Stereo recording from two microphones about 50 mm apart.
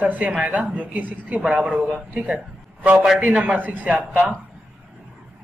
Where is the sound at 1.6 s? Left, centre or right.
Right.